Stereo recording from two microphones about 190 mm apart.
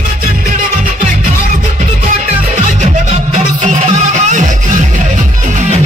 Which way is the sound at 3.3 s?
40° right (ahead or behind).